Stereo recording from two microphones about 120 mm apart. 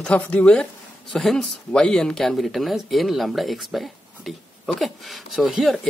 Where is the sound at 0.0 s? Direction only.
10° left (ahead or behind).